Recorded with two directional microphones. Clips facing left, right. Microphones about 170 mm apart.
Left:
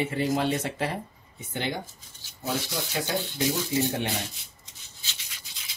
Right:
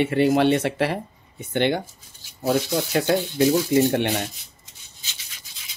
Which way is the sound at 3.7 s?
65° right (ahead or behind).